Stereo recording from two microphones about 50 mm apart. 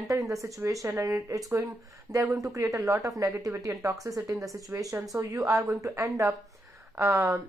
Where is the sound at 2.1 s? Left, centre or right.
Right.